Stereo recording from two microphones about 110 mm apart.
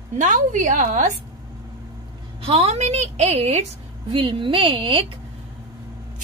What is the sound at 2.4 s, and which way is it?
A woman's voice, 60° right (ahead or behind).